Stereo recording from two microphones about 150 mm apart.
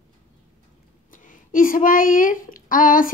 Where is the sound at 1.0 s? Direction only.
60° left (ahead or behind).